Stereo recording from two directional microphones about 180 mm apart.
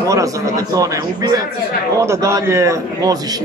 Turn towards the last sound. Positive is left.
turn(degrees=-15)  # may be behind; listen again after turning